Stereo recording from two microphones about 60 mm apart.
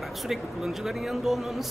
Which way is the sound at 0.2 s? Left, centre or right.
Centre.